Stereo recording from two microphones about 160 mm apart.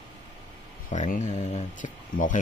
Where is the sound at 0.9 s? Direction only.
50° left (ahead or behind).